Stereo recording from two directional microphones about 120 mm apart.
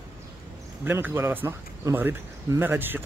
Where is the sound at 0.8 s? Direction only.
20° right (ahead or behind).